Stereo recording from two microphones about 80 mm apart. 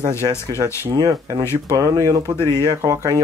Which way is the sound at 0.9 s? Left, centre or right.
Right.